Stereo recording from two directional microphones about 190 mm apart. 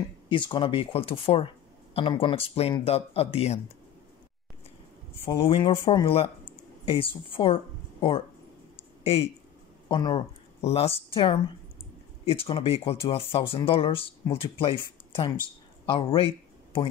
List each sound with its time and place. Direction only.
0.3 s speech: 25° left (ahead or behind)
5.4 s speech: 30° left (ahead or behind)